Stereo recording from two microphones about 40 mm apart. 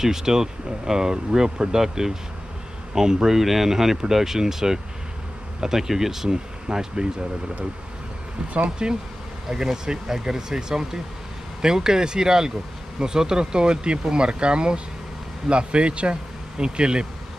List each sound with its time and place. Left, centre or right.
0.0 s speech: centre
8.6 s speech: centre